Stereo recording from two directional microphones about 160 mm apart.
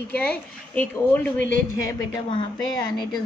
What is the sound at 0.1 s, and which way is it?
Speech, 10° left (ahead or behind).